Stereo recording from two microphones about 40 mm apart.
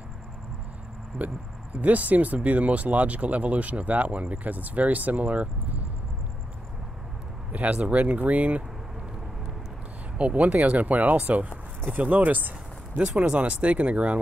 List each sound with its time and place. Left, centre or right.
1.2 s speech: right
7.5 s speech: right
10.1 s speech: right
13.0 s speech: right